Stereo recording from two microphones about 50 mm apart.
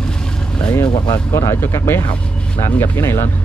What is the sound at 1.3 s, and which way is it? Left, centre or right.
Speech, left.